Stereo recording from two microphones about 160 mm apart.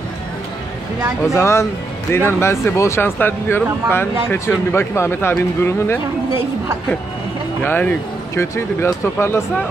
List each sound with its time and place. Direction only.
1.3 s speech: 20° left (ahead or behind)
7.6 s speech: 10° left (ahead or behind)